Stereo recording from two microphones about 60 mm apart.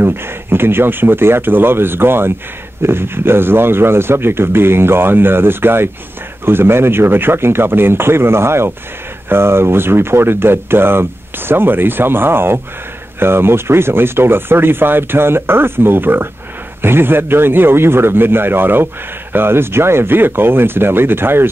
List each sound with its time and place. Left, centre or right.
0.0 s speech: right